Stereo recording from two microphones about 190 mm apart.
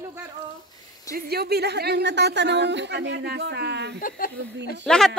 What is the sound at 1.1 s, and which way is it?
Speech, 55° right (ahead or behind).